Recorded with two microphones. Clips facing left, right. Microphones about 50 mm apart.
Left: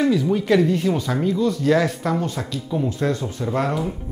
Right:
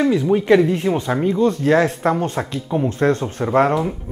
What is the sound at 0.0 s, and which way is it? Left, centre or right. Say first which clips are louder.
Speech: right 3 dB; right.